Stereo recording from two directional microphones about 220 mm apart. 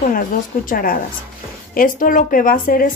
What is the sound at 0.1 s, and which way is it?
A woman's voice, 40° left (ahead or behind).